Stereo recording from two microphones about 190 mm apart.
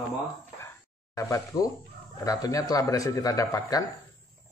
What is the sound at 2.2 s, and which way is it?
Speech, 20° left (ahead or behind).